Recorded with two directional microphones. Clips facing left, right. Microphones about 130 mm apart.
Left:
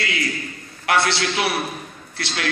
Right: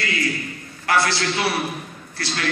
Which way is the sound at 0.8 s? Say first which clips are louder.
Even; 70° left (ahead or behind).